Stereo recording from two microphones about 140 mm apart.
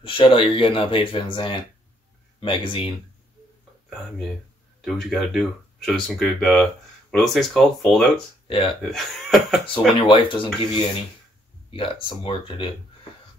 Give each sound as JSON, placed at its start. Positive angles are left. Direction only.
{"t": 0.0, "sound": "speech", "side_deg": 40}
{"t": 4.8, "sound": "speech", "side_deg": 0}
{"t": 8.5, "sound": "speech", "side_deg": 40}
{"t": 8.8, "sound": "speech", "side_deg": 0}
{"t": 10.0, "sound": "speech", "side_deg": 40}